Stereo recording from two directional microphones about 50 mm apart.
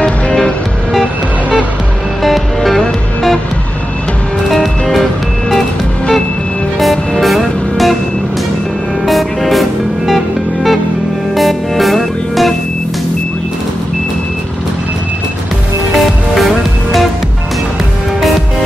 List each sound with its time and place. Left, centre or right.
0.0 s music: centre
2.2 s music: centre
4.5 s music: centre
6.8 s music: centre
9.0 s music: centre
16.3 s music: centre